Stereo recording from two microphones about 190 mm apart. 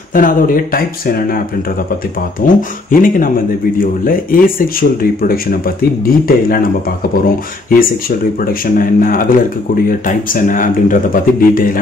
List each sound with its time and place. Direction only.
0.1 s speech: 45° left (ahead or behind)
2.4 s speech: 45° left (ahead or behind)
8.7 s speech: 50° left (ahead or behind)